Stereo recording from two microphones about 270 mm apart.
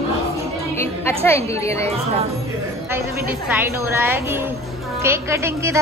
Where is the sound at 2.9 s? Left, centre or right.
Centre.